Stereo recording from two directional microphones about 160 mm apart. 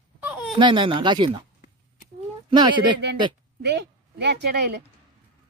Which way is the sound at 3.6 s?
90° right.